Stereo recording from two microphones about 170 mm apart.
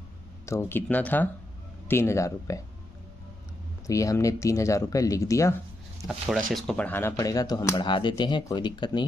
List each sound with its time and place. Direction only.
0.5 s speech: 15° left (ahead or behind)
3.8 s speech: 20° left (ahead or behind)
6.0 s speech: centre (ahead or behind); by 9.0 s 25° left (ahead or behind)